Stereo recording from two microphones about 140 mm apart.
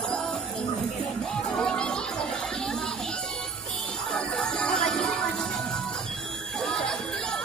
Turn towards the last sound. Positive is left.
turn(degrees=5)  # may be behind; listen again after turning